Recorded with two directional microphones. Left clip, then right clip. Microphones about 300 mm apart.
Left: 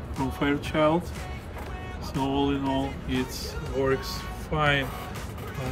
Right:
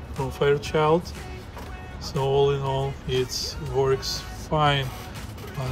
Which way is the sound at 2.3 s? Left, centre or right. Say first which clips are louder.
Right 5 dB; centre.